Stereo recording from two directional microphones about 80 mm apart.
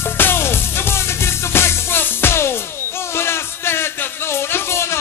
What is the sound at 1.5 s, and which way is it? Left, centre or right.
Music, left.